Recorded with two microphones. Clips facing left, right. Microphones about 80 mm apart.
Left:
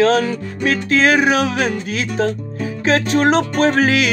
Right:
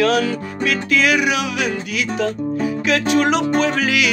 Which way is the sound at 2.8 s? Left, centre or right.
Left.